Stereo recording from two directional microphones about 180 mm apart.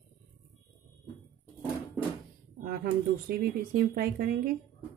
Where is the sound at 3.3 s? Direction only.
55° right (ahead or behind).